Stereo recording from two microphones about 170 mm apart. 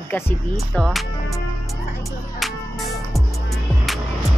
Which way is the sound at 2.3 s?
Centre (ahead or behind).